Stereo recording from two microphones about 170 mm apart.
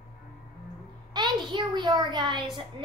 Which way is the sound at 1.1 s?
25° right (ahead or behind).